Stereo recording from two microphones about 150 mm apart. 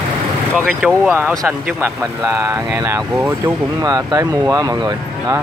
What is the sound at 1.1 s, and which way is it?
Speech, 15° right (ahead or behind).